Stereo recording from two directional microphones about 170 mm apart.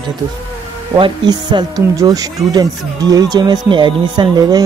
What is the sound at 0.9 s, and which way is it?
Speech, 25° right (ahead or behind).